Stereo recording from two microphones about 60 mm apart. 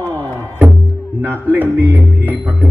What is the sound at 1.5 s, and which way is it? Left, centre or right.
Music, right.